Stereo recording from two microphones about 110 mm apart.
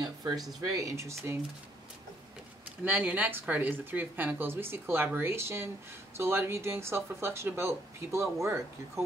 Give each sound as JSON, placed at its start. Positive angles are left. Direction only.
{"t": 0.6, "sound": "speech", "side_deg": -30}
{"t": 2.8, "sound": "speech", "side_deg": -15}